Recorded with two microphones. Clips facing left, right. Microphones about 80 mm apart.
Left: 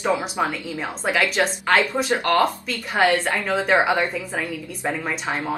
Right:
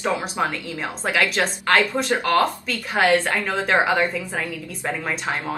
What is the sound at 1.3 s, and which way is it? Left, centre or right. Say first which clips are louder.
A woman's voice: even; centre.